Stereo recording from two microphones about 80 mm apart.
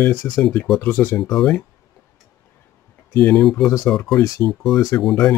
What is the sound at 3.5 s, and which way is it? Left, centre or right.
Speech, centre.